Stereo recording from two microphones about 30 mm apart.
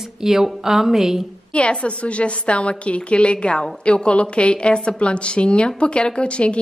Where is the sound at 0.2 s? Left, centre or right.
Centre.